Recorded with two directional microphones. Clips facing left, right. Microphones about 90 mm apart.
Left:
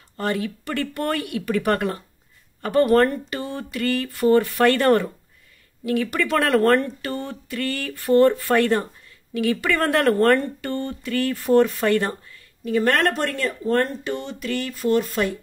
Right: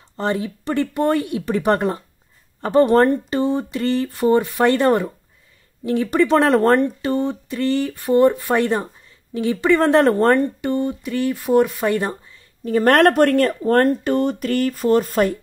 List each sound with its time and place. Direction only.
0.2 s speech: 20° right (ahead or behind)
5.9 s speech: 25° right (ahead or behind)
12.6 s speech: 45° right (ahead or behind)